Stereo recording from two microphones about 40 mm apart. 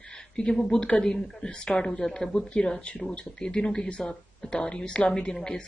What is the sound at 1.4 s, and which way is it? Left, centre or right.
Speech, left.